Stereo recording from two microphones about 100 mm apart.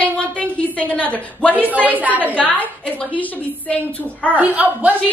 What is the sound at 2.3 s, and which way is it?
A woman's voice, 15° left (ahead or behind).